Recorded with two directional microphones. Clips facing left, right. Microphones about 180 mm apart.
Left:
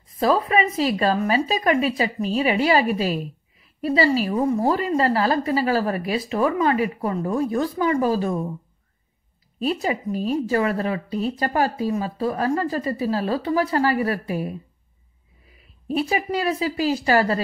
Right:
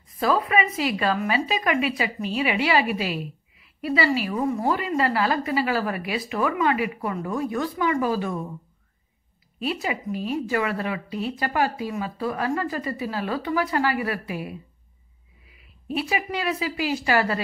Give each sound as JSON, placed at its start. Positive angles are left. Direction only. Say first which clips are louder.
{"t": 0.2, "sound": "a woman's voice", "louder": "left 3 dB", "side_deg": 35}
{"t": 9.6, "sound": "a woman's voice", "louder": "left 4 dB", "side_deg": 40}